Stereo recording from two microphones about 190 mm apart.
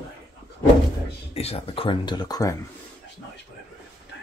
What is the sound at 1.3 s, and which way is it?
Speech, 30° left (ahead or behind).